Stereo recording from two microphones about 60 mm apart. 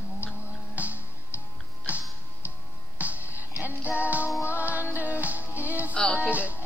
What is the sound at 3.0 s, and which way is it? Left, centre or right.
Music, right.